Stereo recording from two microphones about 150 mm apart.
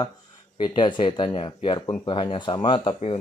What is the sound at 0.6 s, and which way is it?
Speech, 30° left (ahead or behind).